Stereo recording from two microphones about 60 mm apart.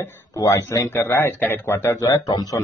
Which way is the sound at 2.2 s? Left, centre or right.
Left.